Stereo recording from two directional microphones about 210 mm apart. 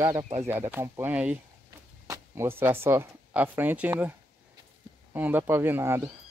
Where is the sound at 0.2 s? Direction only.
30° right (ahead or behind).